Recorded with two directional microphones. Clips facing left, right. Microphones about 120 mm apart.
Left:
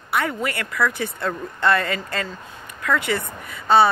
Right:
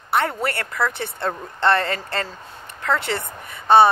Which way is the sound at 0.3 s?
35° right (ahead or behind).